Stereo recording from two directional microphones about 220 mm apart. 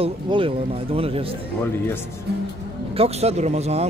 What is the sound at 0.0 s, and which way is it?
Speech, 25° right (ahead or behind).